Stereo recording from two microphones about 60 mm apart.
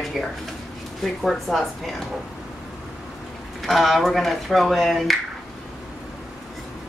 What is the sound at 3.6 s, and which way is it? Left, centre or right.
Speech, centre.